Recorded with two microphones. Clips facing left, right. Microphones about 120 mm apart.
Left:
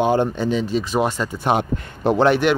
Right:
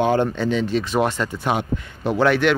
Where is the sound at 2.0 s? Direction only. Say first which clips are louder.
Left 2 dB; 25° left (ahead or behind).